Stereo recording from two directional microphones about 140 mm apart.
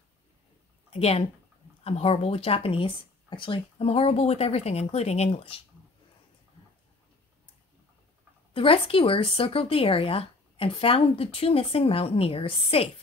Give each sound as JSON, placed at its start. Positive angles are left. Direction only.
{"t": 0.8, "sound": "speech", "side_deg": 45}
{"t": 8.5, "sound": "speech", "side_deg": 40}